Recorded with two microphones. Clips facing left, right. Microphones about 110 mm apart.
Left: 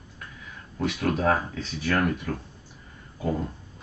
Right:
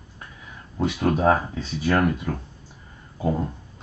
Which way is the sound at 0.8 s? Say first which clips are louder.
Right 4 dB; 25° right (ahead or behind).